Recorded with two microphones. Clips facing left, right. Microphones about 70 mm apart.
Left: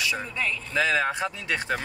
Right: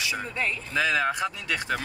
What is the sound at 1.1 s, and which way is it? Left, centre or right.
Speech, left.